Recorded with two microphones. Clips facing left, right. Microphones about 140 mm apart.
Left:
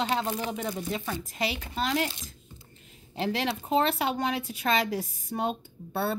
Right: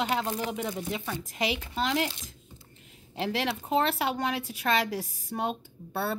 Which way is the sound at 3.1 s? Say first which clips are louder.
Left 1 dB; 5° right (ahead or behind).